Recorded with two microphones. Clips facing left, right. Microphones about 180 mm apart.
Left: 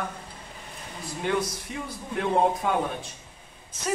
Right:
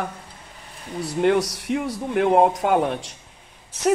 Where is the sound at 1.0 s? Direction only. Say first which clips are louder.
Right 8 dB; 75° right (ahead or behind).